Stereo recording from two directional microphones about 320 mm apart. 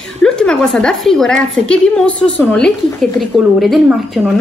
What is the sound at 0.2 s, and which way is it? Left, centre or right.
A woman's voice, centre.